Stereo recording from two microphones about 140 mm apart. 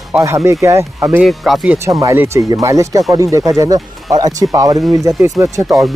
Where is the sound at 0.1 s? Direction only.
20° right (ahead or behind).